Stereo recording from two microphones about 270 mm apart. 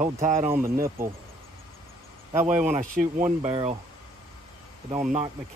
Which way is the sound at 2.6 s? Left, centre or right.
Right.